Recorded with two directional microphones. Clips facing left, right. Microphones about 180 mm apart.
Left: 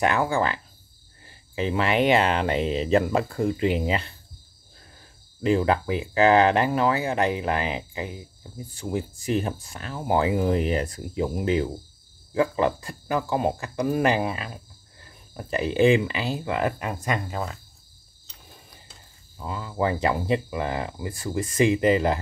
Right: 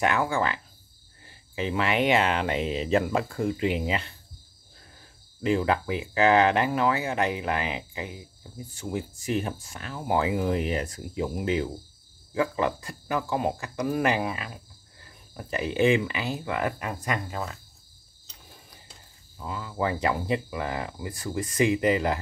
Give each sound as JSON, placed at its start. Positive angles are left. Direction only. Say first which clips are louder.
{"t": 0.0, "sound": "speech", "louder": "left 2 dB", "side_deg": 35}
{"t": 5.4, "sound": "speech", "louder": "left 3 dB", "side_deg": 35}
{"t": 19.4, "sound": "speech", "louder": "left 3 dB", "side_deg": 30}